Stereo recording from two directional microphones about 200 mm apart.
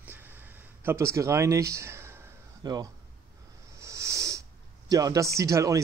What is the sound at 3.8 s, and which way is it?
Wheeze, 15° right (ahead or behind).